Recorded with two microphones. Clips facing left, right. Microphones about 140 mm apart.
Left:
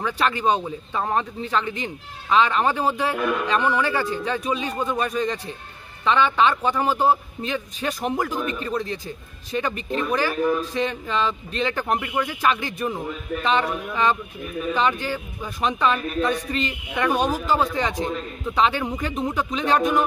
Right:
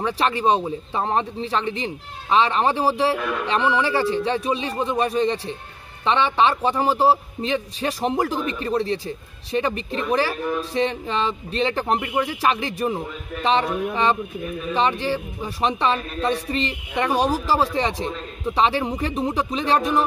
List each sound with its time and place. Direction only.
0.0 s speech: 30° right (ahead or behind)